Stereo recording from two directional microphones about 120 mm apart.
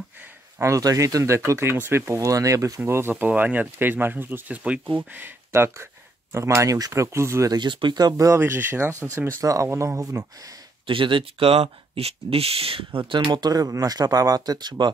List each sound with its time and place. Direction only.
0.6 s speech: 25° right (ahead or behind)
7.5 s speech: 40° right (ahead or behind)
8.4 s speech: 20° right (ahead or behind)
10.9 s speech: 45° right (ahead or behind)